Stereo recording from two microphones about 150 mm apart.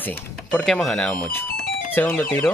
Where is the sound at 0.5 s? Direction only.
5° left (ahead or behind).